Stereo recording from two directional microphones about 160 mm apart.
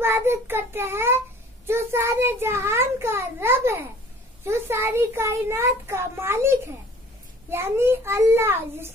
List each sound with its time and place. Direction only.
0.0 s child singing: 15° right (ahead or behind)
1.7 s a child's voice: 15° right (ahead or behind)